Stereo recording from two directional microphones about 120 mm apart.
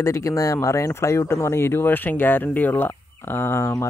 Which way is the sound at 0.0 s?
25° left (ahead or behind).